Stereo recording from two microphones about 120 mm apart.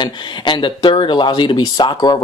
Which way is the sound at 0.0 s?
40° left (ahead or behind).